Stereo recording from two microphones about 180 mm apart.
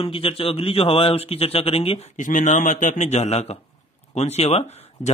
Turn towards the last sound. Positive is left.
turn(degrees=35)  # may be behind; listen again after turning